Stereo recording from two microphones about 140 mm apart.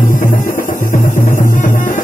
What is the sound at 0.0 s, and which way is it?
Music, 75° left (ahead or behind).